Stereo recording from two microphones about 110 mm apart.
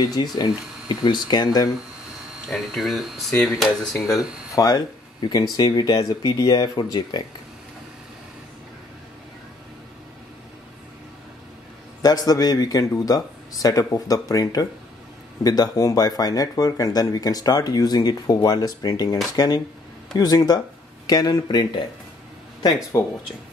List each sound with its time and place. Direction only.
0.0 s speech: 40° left (ahead or behind)
2.4 s speech: centre (ahead or behind)
4.6 s speech: 35° left (ahead or behind)
12.0 s speech: 35° left (ahead or behind)
22.9 s speech: 25° left (ahead or behind)